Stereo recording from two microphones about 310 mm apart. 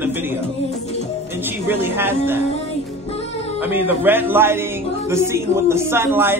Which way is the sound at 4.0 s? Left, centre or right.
Centre.